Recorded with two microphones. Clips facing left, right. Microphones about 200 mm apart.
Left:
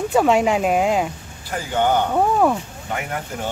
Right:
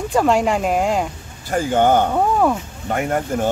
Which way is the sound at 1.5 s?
45° right (ahead or behind).